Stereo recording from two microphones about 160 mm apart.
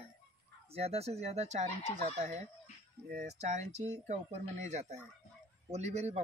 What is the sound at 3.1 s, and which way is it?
Speech, 70° right (ahead or behind).